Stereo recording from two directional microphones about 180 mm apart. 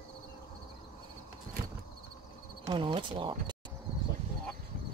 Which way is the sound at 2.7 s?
25° right (ahead or behind).